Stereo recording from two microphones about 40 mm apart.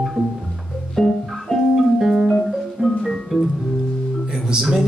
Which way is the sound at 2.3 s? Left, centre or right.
Centre.